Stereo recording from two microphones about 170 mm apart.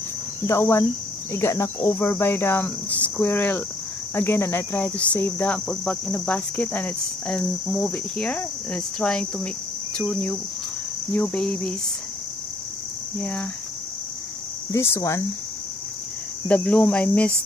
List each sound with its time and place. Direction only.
0.5 s cricket: 15° left (ahead or behind)
13.2 s cricket: 5° left (ahead or behind)
14.7 s cricket: 15° left (ahead or behind)
16.4 s cricket: 5° left (ahead or behind)